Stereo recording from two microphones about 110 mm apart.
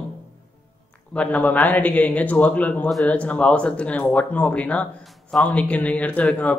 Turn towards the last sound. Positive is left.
turn(degrees=10)  # may be behind; listen again after turning